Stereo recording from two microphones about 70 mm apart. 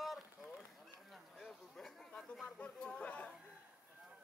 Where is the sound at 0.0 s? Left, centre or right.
Centre.